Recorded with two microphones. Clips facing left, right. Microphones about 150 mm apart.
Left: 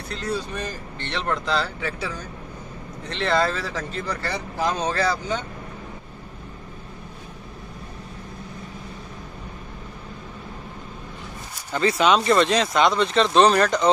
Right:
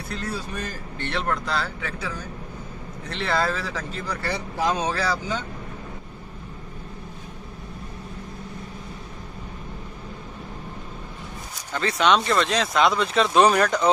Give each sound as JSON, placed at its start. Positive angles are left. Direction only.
{"t": 0.9, "sound": "speech", "side_deg": -5}
{"t": 11.7, "sound": "speech", "side_deg": 5}